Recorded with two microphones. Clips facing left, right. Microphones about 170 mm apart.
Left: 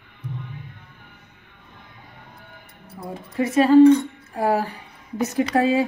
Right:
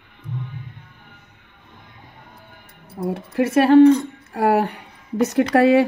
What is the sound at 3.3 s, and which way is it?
A woman's voice, 70° right (ahead or behind).